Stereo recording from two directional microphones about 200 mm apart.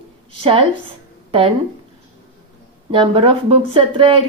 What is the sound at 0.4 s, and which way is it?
Speech, 30° right (ahead or behind).